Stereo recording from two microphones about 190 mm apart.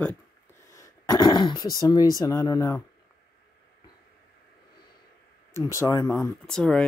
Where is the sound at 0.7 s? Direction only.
20° left (ahead or behind).